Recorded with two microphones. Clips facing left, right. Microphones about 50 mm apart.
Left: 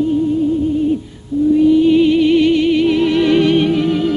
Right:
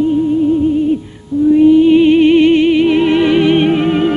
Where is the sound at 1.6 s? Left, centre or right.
Right.